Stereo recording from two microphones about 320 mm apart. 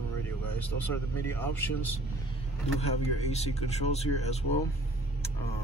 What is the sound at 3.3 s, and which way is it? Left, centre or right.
Speech, centre.